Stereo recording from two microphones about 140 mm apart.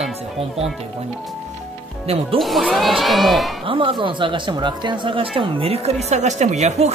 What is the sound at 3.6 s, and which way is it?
Speech, 40° right (ahead or behind).